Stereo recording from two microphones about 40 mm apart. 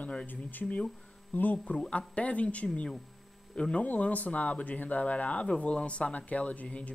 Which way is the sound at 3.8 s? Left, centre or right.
Left.